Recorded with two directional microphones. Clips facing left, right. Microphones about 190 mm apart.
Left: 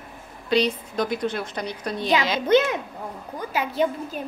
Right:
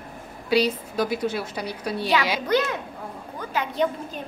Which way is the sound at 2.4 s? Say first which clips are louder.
Left 4 dB; 20° left (ahead or behind).